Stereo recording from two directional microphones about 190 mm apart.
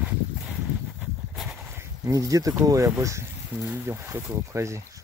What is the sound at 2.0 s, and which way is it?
Speech, 15° right (ahead or behind).